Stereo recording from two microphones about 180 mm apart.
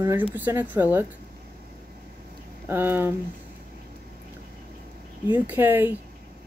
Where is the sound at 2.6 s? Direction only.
10° right (ahead or behind).